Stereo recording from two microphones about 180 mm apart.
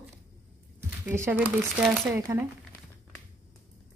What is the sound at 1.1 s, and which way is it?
Speech, 15° right (ahead or behind).